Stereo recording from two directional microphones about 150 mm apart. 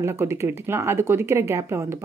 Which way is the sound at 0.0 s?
15° right (ahead or behind).